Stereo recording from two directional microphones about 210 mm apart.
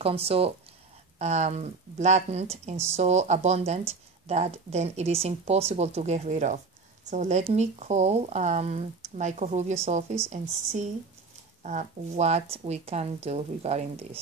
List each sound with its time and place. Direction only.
0.0 s speech: 30° right (ahead or behind)